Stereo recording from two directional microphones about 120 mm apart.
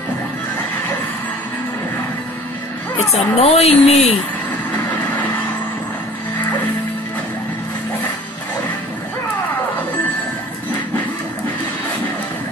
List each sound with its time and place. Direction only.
3.1 s a woman's voice: 60° left (ahead or behind)